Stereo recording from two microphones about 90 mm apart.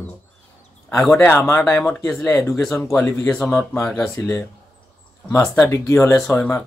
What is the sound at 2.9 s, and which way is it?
Speech, 20° left (ahead or behind).